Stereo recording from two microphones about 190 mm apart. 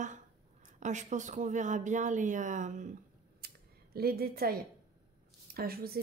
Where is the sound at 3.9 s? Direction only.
55° right (ahead or behind).